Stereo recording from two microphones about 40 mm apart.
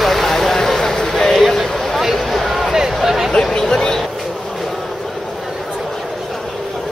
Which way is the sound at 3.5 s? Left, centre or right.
Centre.